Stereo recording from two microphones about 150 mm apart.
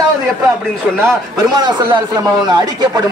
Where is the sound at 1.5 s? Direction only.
30° right (ahead or behind).